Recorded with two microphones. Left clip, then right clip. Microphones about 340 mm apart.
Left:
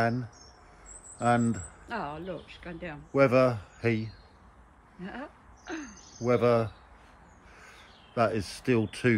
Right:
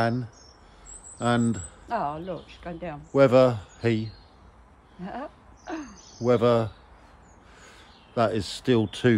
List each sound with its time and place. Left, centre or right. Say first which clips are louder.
0.0 s speech: right 2 dB; centre
1.9 s speech: right 7 dB; right
3.1 s speech: right 5 dB; centre
5.0 s a sound: right 5 dB; right
6.2 s speech: right 3 dB; centre